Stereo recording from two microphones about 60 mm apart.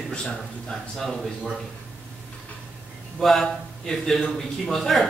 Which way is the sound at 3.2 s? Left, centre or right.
Centre.